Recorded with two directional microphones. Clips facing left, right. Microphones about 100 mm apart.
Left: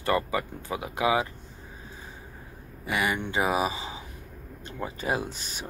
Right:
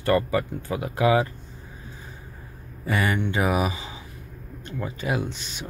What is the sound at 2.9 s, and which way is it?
Speech, 10° left (ahead or behind).